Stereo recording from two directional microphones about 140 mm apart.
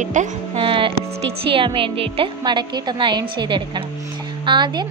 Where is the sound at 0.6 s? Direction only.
40° right (ahead or behind).